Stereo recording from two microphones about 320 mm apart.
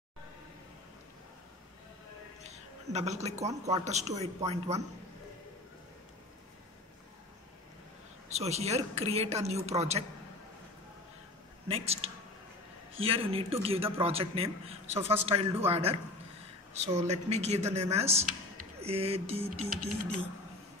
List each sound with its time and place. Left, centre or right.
2.4 s a man's voice: right
8.4 s a woman's voice: centre
11.6 s a woman's voice: centre